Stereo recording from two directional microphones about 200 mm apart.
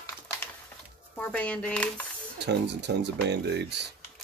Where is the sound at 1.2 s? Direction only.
5° left (ahead or behind).